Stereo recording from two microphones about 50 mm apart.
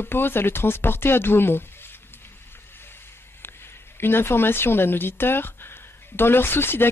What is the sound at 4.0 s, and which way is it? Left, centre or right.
A woman's voice, left.